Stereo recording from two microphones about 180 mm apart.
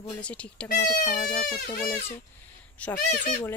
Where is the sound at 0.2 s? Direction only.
5° left (ahead or behind).